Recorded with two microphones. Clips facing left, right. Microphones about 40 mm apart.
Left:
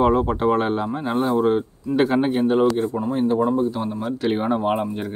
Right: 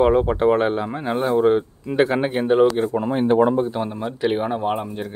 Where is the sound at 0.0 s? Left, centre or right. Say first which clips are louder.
Right 2 dB; centre.